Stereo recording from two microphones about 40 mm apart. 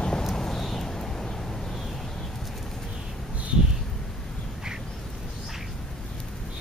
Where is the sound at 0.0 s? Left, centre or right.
Centre.